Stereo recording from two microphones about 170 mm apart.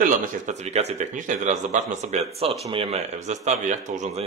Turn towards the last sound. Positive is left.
turn(degrees=-40)  # may be behind; listen again after turning